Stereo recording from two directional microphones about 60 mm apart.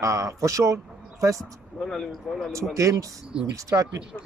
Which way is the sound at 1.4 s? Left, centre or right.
Centre.